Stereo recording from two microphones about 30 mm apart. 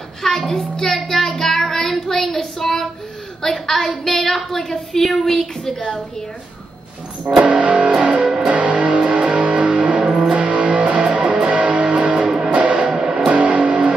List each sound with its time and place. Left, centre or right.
0.5 s child singing: centre
3.4 s a sound: centre
3.9 s a woman's voice: centre
7.3 s music: right
13.3 s music: right